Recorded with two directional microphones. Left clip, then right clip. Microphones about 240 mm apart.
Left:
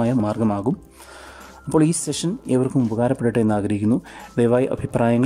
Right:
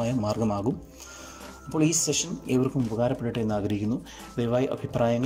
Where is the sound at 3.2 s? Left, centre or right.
Left.